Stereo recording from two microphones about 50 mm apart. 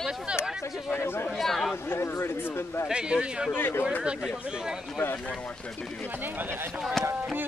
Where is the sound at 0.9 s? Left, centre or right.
Left.